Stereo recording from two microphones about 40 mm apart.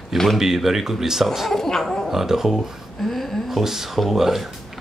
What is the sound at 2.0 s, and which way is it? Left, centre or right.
Speech, centre.